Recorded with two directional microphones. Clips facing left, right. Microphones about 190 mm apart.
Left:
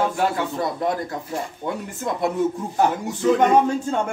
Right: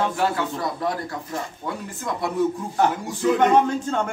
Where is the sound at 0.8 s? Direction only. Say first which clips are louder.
Left 2 dB; 20° left (ahead or behind).